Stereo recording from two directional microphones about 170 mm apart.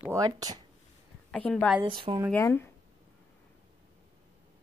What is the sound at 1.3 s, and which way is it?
Speech, 5° left (ahead or behind).